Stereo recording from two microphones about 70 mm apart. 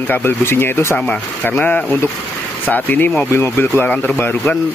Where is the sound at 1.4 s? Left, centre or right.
Left.